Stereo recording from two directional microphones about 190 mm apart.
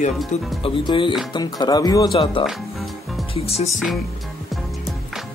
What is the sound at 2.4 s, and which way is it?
Music, centre (ahead or behind).